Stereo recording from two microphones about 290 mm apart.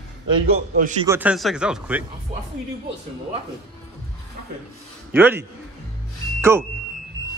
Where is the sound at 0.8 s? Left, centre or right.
Right.